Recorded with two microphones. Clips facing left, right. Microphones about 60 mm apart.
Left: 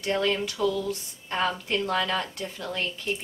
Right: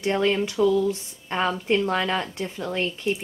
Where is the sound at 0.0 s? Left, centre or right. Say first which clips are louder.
Right 4 dB; right.